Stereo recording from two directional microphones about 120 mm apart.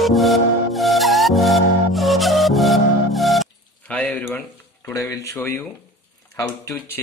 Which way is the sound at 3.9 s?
10° left (ahead or behind).